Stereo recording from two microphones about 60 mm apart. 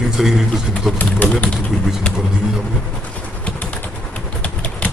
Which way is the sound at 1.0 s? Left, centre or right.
Left.